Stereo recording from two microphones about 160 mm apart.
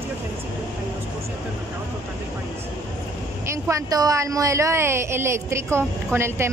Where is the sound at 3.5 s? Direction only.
20° right (ahead or behind).